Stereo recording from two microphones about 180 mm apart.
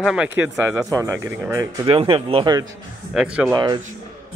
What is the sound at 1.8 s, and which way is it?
Speech, 30° right (ahead or behind).